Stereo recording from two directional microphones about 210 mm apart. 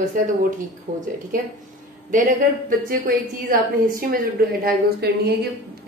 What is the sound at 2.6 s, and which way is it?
A woman's voice, 40° right (ahead or behind).